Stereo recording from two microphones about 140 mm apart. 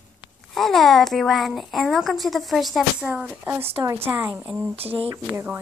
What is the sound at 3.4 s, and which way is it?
A woman's voice, 20° right (ahead or behind).